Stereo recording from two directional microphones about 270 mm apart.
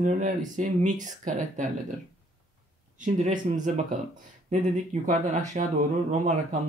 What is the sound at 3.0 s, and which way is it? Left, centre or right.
Speech, right.